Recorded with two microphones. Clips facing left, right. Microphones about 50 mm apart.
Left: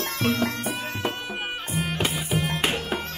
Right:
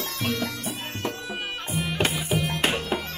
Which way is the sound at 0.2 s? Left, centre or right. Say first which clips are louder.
Left 4 dB; centre.